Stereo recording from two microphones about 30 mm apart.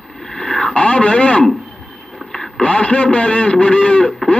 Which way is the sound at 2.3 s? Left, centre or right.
Centre.